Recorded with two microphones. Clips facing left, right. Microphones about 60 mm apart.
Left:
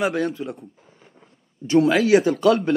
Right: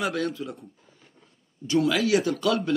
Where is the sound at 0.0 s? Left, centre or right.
Left.